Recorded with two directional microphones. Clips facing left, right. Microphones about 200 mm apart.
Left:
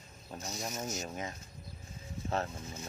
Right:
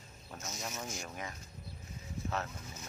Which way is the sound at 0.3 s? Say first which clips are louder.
Left 3 dB; 35° left (ahead or behind).